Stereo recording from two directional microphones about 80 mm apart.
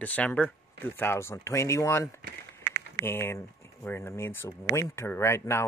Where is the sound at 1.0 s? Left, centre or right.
Left.